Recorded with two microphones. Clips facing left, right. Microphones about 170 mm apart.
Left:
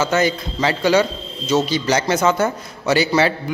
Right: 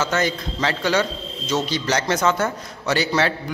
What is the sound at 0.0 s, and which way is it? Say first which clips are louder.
A man's voice: left 4 dB; 5° left (ahead or behind).